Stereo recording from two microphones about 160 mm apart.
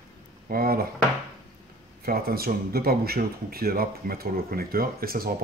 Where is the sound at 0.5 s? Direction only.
70° right (ahead or behind).